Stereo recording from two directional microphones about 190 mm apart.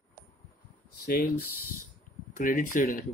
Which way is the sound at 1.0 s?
50° left (ahead or behind).